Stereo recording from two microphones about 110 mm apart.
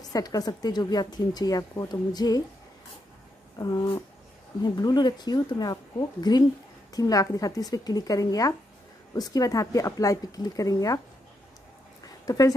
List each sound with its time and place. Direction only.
0.0 s a woman's voice: 35° left (ahead or behind)
3.5 s a woman's voice: 35° left (ahead or behind)
12.3 s a woman's voice: 35° left (ahead or behind)